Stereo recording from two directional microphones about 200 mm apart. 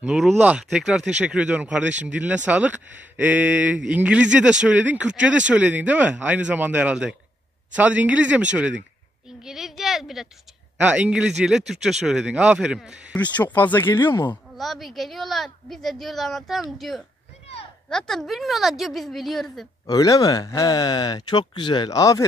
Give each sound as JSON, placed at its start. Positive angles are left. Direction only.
{"t": 0.0, "sound": "speech", "side_deg": 0}
{"t": 14.6, "sound": "speech", "side_deg": 0}
{"t": 19.9, "sound": "speech", "side_deg": 20}